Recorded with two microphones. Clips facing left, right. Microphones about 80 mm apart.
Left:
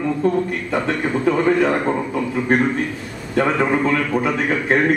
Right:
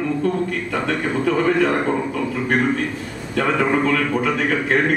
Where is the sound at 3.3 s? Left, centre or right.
Left.